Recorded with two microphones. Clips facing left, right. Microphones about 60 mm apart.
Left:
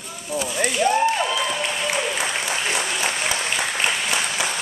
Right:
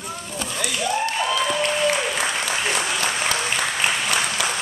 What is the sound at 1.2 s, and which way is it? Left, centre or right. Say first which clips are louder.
Applause: right 2 dB; centre.